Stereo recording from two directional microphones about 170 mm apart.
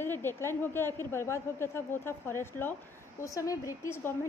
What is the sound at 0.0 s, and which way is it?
A woman's voice, 15° left (ahead or behind).